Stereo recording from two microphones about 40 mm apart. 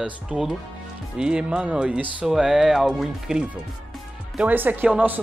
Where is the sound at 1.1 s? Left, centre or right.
Right.